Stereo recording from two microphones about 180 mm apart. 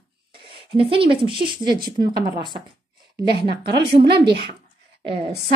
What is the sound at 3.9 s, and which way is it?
Speech, 60° right (ahead or behind).